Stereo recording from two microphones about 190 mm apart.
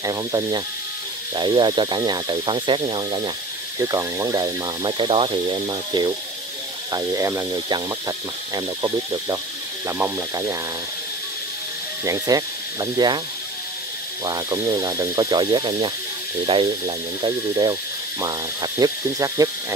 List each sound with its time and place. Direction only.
0.0 s speech: 20° right (ahead or behind)
12.0 s speech: 20° right (ahead or behind)
14.2 s speech: 20° right (ahead or behind)